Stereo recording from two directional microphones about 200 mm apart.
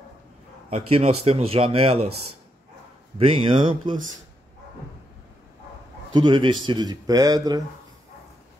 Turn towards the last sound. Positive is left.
turn(degrees=-20)  # may be behind; listen again after turning